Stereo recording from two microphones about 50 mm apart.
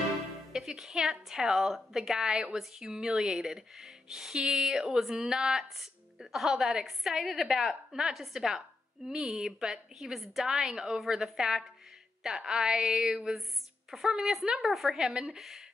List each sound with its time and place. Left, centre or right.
0.5 s a woman's voice: centre
15.0 s a woman's voice: centre